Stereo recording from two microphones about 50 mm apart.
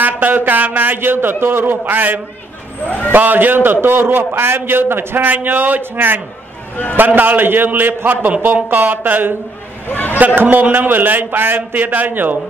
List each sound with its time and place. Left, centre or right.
0.0 s a sound: right
0.7 s a man's voice: right
9.8 s a man's voice: left
10.1 s a man's voice: right